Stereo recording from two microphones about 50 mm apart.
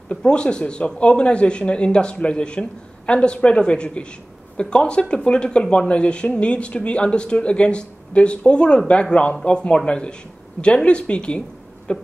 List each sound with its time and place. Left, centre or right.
0.1 s speech: centre